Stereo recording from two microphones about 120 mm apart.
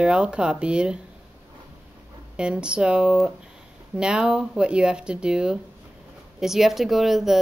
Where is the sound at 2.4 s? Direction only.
10° right (ahead or behind).